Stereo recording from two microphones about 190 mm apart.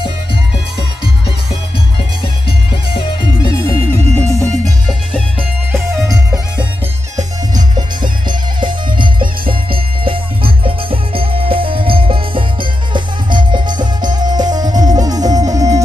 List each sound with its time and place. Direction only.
2.7 s music: 25° left (ahead or behind)
5.7 s music: 15° right (ahead or behind)
7.7 s music: 25° right (ahead or behind)